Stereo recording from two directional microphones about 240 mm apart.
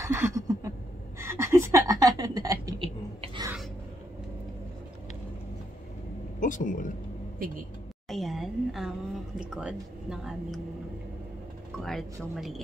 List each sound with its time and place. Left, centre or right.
0.0 s a sound: centre
6.4 s speech: left
7.3 s speech: right
8.1 s a sound: centre
9.4 s speech: centre
11.8 s speech: centre